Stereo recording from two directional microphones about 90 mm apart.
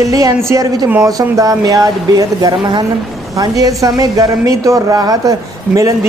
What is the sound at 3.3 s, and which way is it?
A woman's voice, 40° right (ahead or behind).